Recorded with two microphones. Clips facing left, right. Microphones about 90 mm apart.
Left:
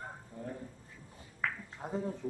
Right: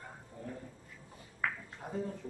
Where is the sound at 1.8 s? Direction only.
25° left (ahead or behind).